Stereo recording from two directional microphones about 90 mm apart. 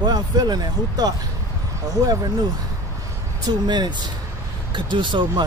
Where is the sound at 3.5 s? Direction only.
55° right (ahead or behind).